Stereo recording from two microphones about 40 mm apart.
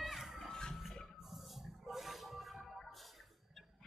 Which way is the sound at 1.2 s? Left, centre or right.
Centre.